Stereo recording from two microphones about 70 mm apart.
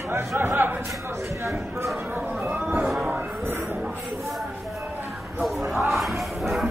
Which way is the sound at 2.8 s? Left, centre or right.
Centre.